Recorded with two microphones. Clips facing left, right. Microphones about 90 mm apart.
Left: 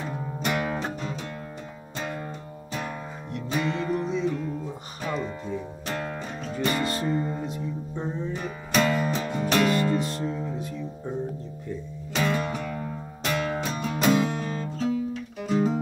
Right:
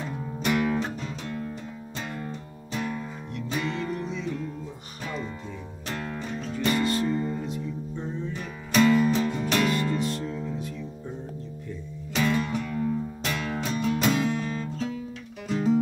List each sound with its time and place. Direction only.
0.1 s music: 20° left (ahead or behind)
2.0 s music: 15° left (ahead or behind)
5.9 s music: 10° left (ahead or behind)
6.8 s music: 35° left (ahead or behind)
7.1 s music: 20° left (ahead or behind)
7.4 s music: 35° left (ahead or behind)
8.3 s music: 15° left (ahead or behind)
9.9 s music: 35° left (ahead or behind)
12.1 s music: 15° left (ahead or behind)
15.4 s music: 10° left (ahead or behind)